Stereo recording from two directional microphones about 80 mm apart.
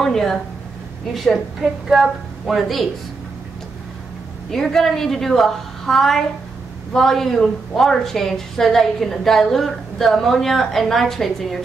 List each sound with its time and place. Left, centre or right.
0.0 s a woman's voice: centre
4.5 s a woman's voice: centre